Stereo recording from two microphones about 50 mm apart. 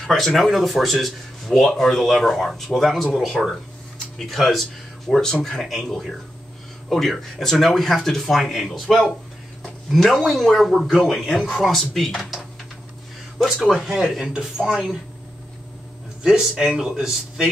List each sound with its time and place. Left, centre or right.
0.0 s speech: centre
11.9 s speech: centre
13.4 s speech: centre
14.2 s speech: right
16.2 s speech: centre